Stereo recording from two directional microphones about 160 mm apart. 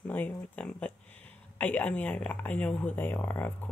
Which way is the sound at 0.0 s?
10° left (ahead or behind).